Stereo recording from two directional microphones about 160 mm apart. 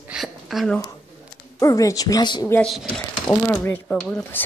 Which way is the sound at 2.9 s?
10° left (ahead or behind).